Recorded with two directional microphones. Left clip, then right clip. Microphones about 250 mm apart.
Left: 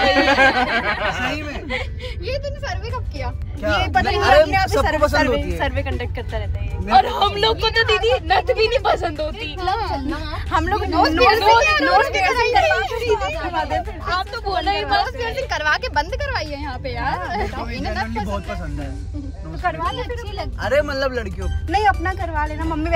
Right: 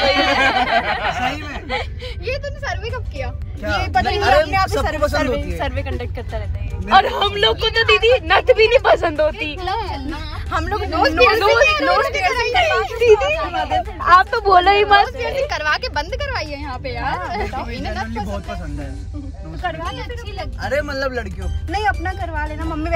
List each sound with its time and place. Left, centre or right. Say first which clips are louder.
0.0 s a sound: left 1 dB; centre
7.2 s a woman's voice: right 1 dB; centre
14.4 s speech: right 9 dB; right
15.0 s a woman's voice: right 3 dB; centre
19.6 s a woman's voice: left 3 dB; centre